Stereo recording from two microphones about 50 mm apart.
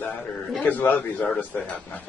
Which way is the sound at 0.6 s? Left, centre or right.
Left.